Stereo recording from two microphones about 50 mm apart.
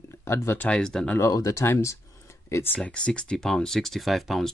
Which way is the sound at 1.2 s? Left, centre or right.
Left.